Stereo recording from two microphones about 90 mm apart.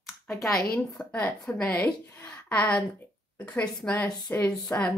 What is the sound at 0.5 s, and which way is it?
A woman's voice, 5° left (ahead or behind).